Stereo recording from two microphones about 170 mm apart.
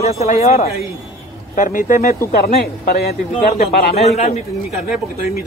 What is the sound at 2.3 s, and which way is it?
Speech, 65° left (ahead or behind).